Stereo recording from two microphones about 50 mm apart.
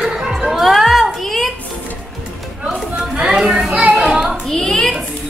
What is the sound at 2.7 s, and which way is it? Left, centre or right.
Chatter, centre.